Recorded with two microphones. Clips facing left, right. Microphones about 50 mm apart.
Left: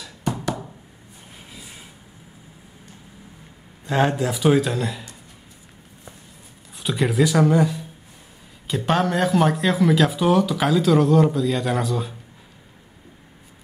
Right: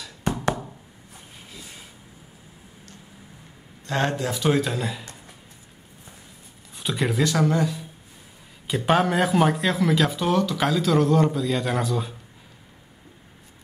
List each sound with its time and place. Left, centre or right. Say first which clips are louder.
0.2 s a sound: right 1 dB; right
1.5 s vehicle: even; centre
3.8 s speech: left 4 dB; centre
6.7 s speech: left 3 dB; centre
8.6 s speech: even; centre